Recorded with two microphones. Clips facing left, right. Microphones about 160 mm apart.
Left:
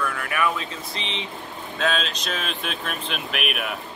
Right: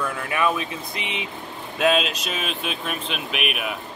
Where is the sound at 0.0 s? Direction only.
20° right (ahead or behind).